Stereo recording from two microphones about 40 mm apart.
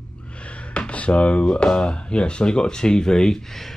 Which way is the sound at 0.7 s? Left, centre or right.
Left.